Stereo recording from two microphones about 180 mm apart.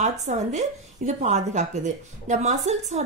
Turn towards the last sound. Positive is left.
turn(degrees=-40)  # may be behind; listen again after turning